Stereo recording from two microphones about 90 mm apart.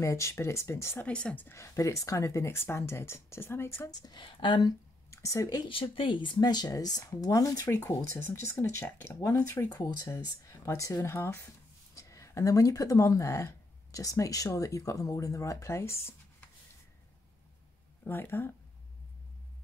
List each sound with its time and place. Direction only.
0.0 s speech: 35° left (ahead or behind)
0.9 s speech: 15° left (ahead or behind)
1.5 s speech: 35° left (ahead or behind)
3.9 s speech: 45° left (ahead or behind)
4.2 s speech: 60° left (ahead or behind)
5.1 s speech: 35° left (ahead or behind)
5.7 s speech: 75° left (ahead or behind); by 9.7 s 30° left (ahead or behind)
9.7 s speech: 50° left (ahead or behind); by 16.2 s 30° left (ahead or behind)
18.0 s speech: 25° left (ahead or behind)